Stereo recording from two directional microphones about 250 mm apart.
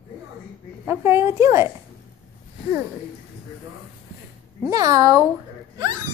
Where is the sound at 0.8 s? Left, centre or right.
Centre.